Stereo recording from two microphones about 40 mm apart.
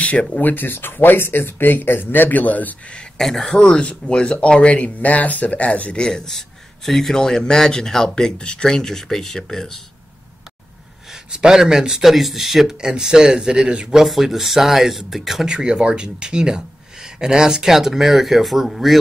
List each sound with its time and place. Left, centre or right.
0.0 s speech: left
0.4 s speech: left
3.2 s speech: centre
3.5 s speech: centre; by 5.7 s left
5.9 s speech: centre
8.6 s speech: centre
11.3 s a man's voice: centre
12.0 s speech: centre
12.8 s a man's voice: centre
13.8 s speech: centre
15.4 s a man's voice: centre